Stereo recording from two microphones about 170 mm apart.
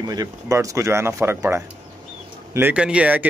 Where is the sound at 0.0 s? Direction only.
20° right (ahead or behind).